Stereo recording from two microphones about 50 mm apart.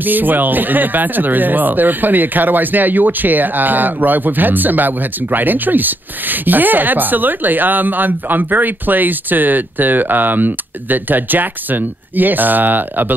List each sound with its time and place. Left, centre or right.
0.0 s speech: right